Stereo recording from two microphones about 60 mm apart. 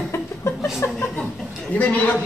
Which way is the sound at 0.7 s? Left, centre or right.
Left.